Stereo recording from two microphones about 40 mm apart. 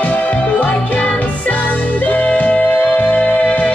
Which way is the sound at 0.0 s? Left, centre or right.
Left.